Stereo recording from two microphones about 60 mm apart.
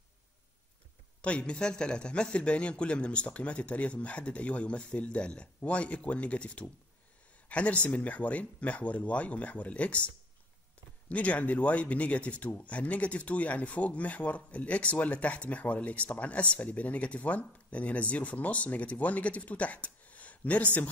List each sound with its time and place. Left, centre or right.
1.2 s speech: centre